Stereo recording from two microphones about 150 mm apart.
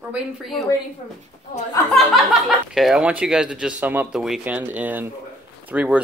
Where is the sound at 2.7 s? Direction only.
5° right (ahead or behind).